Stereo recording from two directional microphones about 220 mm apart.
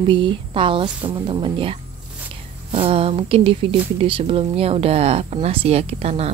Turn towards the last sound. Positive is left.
turn(degrees=-30)  # may be behind; listen again after turning